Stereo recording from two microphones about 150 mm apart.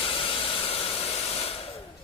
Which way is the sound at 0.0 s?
35° left (ahead or behind).